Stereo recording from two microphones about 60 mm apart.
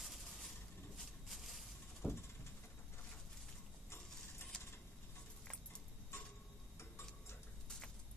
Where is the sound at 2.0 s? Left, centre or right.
Centre.